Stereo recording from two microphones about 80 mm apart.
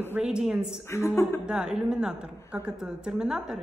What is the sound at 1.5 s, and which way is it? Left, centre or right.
A woman's voice, centre.